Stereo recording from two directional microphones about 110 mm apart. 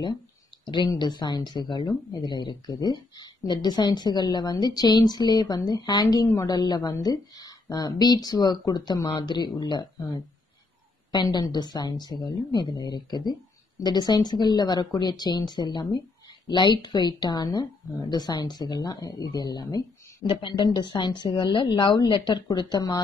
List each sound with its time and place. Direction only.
0.9 s a woman's voice: 40° left (ahead or behind)